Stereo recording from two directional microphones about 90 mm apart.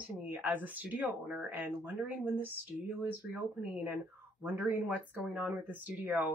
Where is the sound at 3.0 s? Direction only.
20° right (ahead or behind).